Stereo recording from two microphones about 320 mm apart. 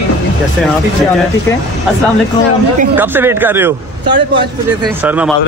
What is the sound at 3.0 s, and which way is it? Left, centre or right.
Speech, centre.